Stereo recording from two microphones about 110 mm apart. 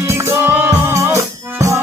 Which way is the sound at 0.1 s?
25° right (ahead or behind).